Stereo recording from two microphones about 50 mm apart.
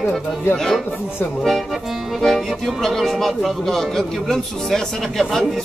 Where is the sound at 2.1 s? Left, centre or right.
Centre.